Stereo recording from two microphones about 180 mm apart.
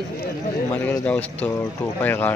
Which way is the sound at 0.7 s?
10° left (ahead or behind).